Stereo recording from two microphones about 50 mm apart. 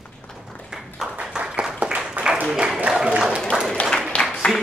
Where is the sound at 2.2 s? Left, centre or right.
Right.